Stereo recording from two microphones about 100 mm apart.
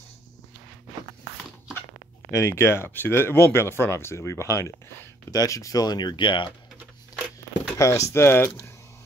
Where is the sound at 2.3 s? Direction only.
30° left (ahead or behind); by 6.5 s 55° left (ahead or behind).